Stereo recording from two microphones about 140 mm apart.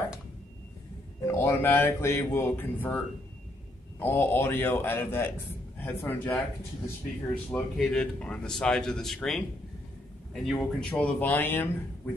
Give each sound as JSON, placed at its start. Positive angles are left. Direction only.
{"t": 1.2, "sound": "speech", "side_deg": 20}
{"t": 4.0, "sound": "speech", "side_deg": 15}
{"t": 7.5, "sound": "speech", "side_deg": 5}